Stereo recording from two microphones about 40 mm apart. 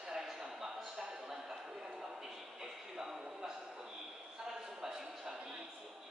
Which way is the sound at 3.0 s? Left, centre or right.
Centre.